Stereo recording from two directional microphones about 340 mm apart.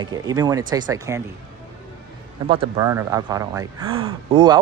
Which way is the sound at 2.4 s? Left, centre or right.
Centre.